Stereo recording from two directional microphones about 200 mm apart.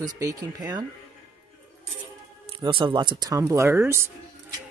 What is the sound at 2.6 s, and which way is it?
Speech, 25° right (ahead or behind).